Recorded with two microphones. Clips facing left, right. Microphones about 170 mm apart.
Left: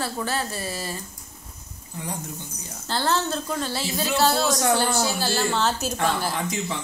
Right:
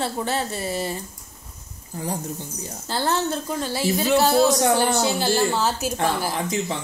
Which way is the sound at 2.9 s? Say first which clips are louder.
Right 1 dB; 15° right (ahead or behind).